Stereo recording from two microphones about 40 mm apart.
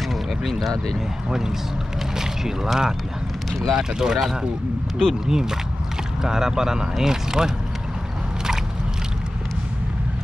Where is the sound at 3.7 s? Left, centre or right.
Centre.